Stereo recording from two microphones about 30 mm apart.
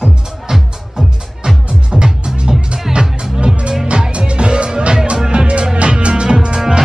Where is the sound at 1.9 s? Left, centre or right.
Centre.